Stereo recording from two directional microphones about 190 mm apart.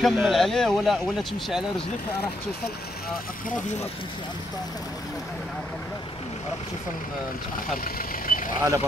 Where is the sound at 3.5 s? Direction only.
40° left (ahead or behind).